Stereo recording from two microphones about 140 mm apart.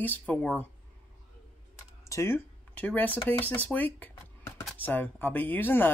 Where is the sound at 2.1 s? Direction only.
20° left (ahead or behind).